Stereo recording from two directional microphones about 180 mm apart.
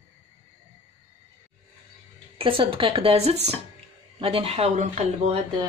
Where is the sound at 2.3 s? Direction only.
30° right (ahead or behind).